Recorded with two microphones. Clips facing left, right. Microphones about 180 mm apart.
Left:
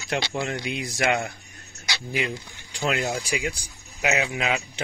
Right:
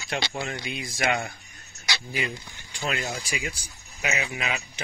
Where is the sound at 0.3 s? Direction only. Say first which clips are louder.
Left 4 dB; 75° left (ahead or behind).